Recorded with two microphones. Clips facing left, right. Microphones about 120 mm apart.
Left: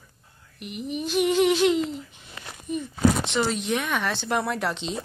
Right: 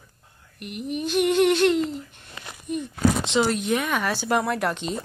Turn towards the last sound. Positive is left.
turn(degrees=0)  # may be behind; listen again after turning